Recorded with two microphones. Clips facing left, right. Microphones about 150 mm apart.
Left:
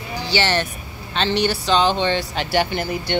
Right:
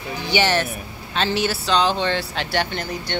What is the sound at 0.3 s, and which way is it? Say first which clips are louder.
Speech: right 1 dB; 10° right (ahead or behind).